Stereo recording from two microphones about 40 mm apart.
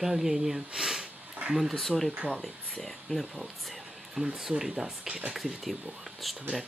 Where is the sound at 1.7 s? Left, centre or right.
Centre.